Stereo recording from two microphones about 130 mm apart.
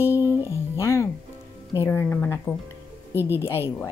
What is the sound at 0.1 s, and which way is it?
Music, 20° right (ahead or behind).